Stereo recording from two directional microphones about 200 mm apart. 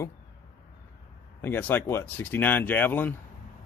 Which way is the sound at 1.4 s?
10° left (ahead or behind).